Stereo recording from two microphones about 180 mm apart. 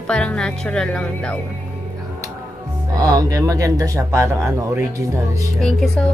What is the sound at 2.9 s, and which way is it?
Speech, 20° right (ahead or behind).